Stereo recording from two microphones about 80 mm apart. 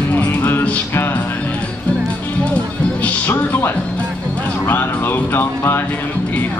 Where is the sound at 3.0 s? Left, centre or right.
Left.